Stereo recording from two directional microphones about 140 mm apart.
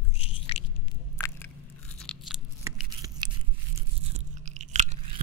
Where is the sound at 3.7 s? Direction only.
55° right (ahead or behind).